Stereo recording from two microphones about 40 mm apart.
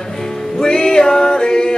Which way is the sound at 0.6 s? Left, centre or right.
Centre.